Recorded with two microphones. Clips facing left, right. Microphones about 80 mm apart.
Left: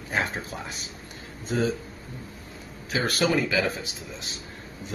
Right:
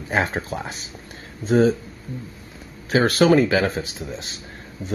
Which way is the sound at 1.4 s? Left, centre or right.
Right.